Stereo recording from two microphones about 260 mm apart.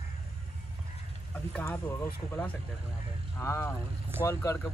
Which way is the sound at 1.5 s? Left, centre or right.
Centre.